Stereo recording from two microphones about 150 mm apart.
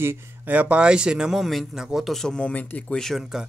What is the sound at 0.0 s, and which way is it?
Speech, 15° right (ahead or behind).